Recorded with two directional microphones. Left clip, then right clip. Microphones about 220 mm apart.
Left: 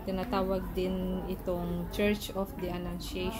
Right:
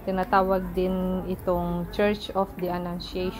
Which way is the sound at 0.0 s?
5° right (ahead or behind).